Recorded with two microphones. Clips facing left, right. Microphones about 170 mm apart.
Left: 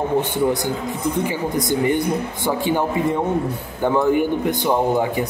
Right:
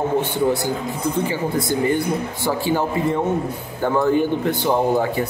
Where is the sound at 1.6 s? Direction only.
20° left (ahead or behind).